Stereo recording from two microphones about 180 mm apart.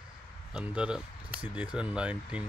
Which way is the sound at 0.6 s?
5° right (ahead or behind).